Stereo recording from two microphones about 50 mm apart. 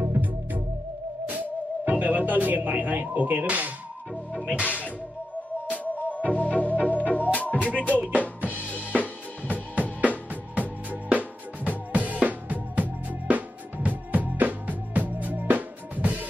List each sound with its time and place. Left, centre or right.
0.0 s music: right
1.3 s speech: right
4.6 s music: right
5.9 s music: left
8.4 s drum kit: right
9.5 s music: right